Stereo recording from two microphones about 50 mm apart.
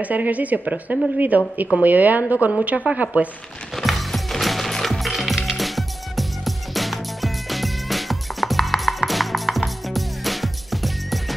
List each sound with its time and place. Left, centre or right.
0.0 s a woman's voice: right
3.7 s music: centre